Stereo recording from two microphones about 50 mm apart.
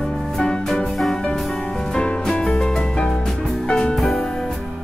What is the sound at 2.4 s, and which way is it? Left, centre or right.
Music, centre.